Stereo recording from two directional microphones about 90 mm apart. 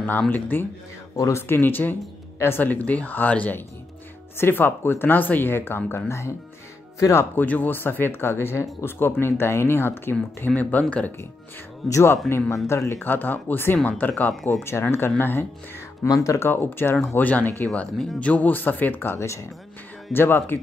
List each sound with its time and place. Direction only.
0.3 s speech: 20° left (ahead or behind)
1.1 s speech: 35° left (ahead or behind); by 11.1 s 15° left (ahead or behind)
11.9 s speech: 30° left (ahead or behind)
14.3 s speech: 5° left (ahead or behind)
14.6 s speech: 30° left (ahead or behind)
16.1 s speech: 35° left (ahead or behind)
16.4 s speech: 25° left (ahead or behind)